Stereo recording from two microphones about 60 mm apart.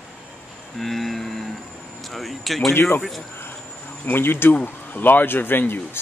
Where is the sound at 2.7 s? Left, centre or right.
Left.